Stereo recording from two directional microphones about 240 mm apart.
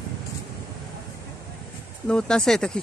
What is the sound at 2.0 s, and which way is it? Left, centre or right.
Speech, centre.